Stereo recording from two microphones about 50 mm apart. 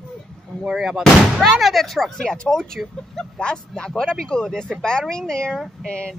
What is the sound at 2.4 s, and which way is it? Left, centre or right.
Speech, centre.